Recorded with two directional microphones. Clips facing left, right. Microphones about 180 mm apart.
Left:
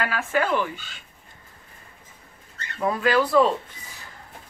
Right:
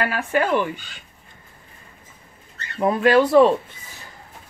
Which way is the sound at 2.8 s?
25° right (ahead or behind).